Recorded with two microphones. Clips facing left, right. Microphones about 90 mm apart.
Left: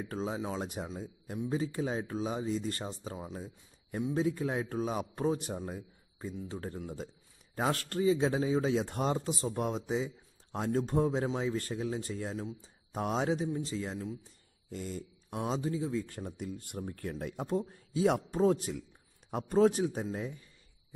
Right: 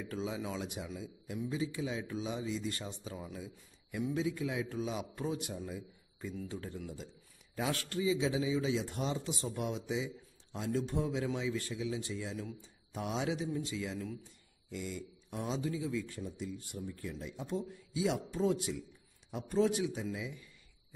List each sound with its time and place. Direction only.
0.0 s a man's voice: 35° left (ahead or behind)
7.5 s a man's voice: 40° left (ahead or behind)
9.3 s a man's voice: 35° left (ahead or behind)
16.2 s a man's voice: 50° left (ahead or behind)